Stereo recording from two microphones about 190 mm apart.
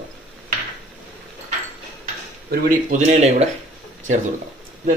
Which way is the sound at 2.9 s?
40° right (ahead or behind).